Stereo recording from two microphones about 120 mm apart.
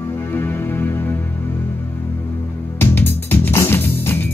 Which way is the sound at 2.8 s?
20° left (ahead or behind).